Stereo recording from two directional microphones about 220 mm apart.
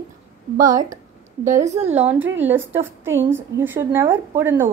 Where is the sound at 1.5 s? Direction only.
30° right (ahead or behind).